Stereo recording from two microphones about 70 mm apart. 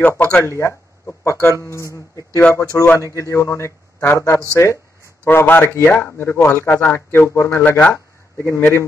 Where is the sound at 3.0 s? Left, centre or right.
Left.